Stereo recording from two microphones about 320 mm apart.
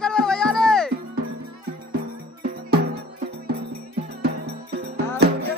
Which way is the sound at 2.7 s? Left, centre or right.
Right.